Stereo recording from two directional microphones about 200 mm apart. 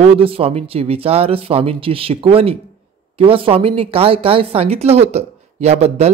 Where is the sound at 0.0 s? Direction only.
30° right (ahead or behind).